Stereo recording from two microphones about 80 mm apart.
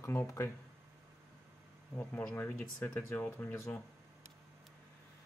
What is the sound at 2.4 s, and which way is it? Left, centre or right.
Speech, centre.